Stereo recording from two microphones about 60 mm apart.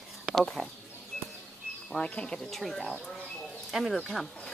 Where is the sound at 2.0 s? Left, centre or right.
Centre.